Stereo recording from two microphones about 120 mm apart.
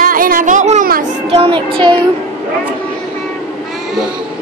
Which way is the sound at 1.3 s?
45° right (ahead or behind).